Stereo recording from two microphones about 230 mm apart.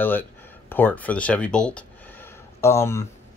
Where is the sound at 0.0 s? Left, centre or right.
Centre.